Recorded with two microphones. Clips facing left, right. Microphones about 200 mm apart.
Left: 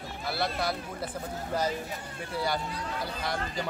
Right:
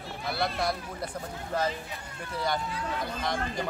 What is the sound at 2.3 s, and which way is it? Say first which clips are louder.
Speech: even; 5° left (ahead or behind).